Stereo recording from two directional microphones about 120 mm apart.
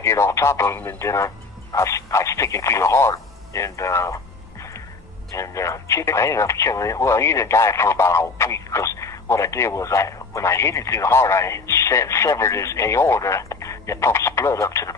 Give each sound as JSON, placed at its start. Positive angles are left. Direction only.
{"t": 0.0, "sound": "speech", "side_deg": 25}